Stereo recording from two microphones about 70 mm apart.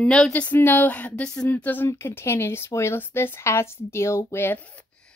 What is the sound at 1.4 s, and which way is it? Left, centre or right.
Speech, left.